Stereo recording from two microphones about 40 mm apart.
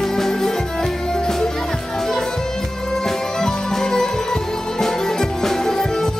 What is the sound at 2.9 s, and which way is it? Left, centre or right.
Music, centre.